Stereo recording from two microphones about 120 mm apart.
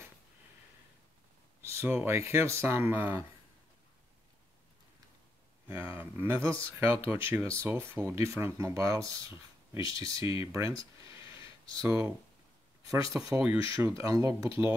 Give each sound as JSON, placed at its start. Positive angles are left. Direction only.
{"t": 1.6, "sound": "a sound", "side_deg": -20}
{"t": 2.0, "sound": "speech", "side_deg": -20}
{"t": 5.7, "sound": "speech", "side_deg": -20}
{"t": 13.1, "sound": "speech", "side_deg": -20}